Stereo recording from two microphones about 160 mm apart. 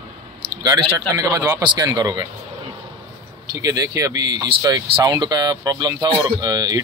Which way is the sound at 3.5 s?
20° right (ahead or behind).